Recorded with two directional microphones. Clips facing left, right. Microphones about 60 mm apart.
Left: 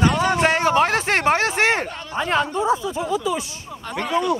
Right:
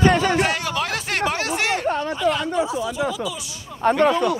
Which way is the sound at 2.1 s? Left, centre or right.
Left.